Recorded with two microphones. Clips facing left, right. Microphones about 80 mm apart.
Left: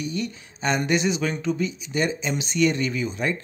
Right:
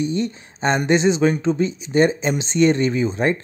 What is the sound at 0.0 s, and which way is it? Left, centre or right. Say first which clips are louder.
Speech: right 7 dB; right.